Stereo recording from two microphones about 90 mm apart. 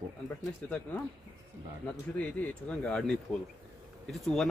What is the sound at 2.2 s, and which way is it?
Speech, 15° left (ahead or behind).